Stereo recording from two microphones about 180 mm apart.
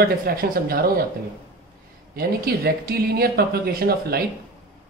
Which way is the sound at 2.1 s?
60° right (ahead or behind).